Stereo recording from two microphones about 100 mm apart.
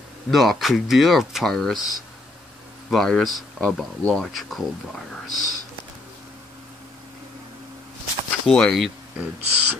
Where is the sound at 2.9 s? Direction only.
5° left (ahead or behind).